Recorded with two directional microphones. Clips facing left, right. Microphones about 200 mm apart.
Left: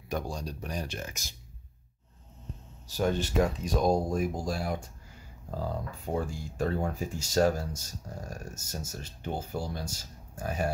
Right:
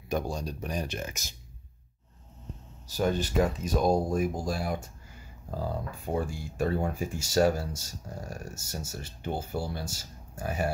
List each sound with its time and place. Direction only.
0.1 s speech: 20° right (ahead or behind)
3.0 s speech: centre (ahead or behind)